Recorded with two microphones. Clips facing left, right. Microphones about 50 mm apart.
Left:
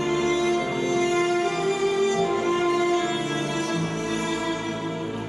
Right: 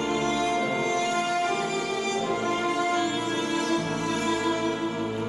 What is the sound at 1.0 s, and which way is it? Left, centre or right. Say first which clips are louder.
Music: left 3 dB; left.